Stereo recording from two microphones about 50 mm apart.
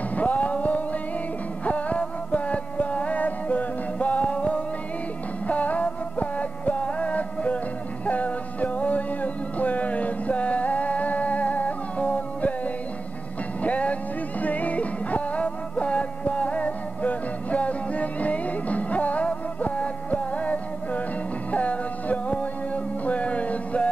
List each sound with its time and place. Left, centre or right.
0.1 s a sound: left
1.6 s music: left
13.6 s music: left